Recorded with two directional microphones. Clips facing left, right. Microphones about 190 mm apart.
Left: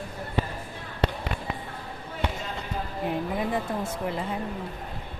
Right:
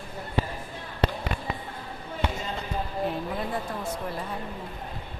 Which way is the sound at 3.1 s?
15° left (ahead or behind).